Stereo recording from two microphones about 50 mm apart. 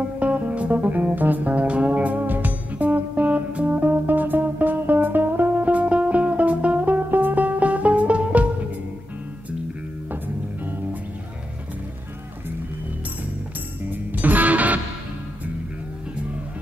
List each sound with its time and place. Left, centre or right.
0.2 s music: right
10.1 s music: right
13.8 s music: right